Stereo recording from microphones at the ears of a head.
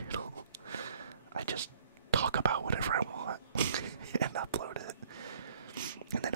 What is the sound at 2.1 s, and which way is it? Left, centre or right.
Whispering, right.